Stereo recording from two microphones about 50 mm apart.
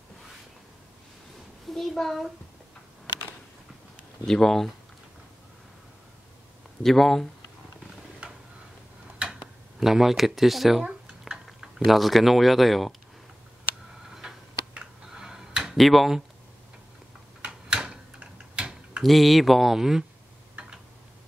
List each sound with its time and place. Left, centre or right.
1.7 s speech: centre
4.3 s speech: centre
6.8 s speech: centre
9.2 s tick-tock: centre
10.8 s a sound: centre
11.4 s speech: centre
15.1 s a sound: centre
15.8 s speech: centre
17.4 s tick-tock: centre
18.2 s a sound: centre
19.0 s speech: centre